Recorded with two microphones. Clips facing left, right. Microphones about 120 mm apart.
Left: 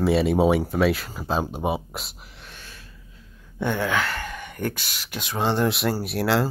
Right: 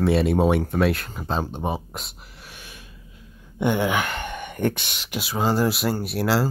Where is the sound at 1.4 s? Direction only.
10° left (ahead or behind); by 2.9 s 15° right (ahead or behind).